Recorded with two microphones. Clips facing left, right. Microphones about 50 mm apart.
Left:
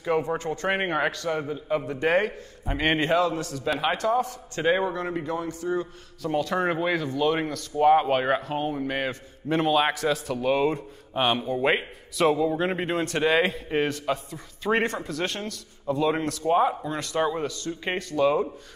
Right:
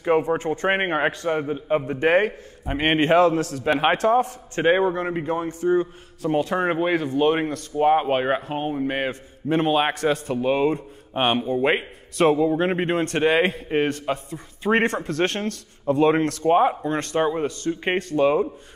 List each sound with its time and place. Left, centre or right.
0.0 s a man's voice: right
7.9 s a man's voice: right
11.1 s a man's voice: right
12.2 s a man's voice: right
17.2 s a man's voice: right